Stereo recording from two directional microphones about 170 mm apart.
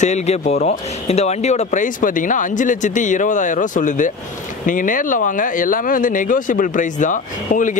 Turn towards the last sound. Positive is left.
turn(degrees=50)  # may be behind; listen again after turning